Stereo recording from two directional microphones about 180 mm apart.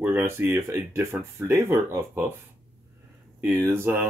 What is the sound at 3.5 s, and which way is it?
Speech, 15° right (ahead or behind).